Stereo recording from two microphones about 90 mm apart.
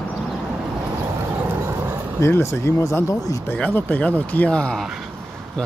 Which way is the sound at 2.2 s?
30° left (ahead or behind).